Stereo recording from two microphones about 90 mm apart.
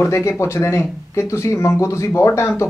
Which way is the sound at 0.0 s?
35° left (ahead or behind).